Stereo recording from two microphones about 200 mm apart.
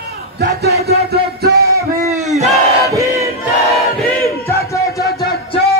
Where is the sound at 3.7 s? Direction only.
Centre (ahead or behind).